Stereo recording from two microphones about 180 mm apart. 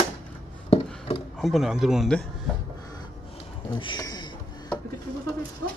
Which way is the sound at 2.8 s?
20° left (ahead or behind).